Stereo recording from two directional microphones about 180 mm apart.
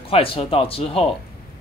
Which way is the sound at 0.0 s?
30° left (ahead or behind).